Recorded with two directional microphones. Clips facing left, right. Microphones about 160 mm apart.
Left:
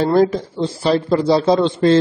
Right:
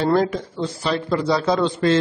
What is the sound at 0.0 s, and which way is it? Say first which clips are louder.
A man's voice: left 4 dB; 35° left (ahead or behind).